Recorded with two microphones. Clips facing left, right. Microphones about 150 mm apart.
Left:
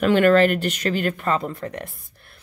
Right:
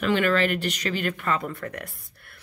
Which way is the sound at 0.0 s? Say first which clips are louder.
Left 7 dB; 45° left (ahead or behind).